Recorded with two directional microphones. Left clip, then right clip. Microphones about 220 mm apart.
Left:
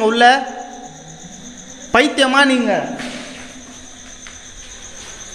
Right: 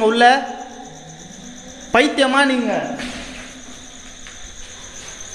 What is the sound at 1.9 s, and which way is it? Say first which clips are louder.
Speech: left 2 dB; centre (ahead or behind).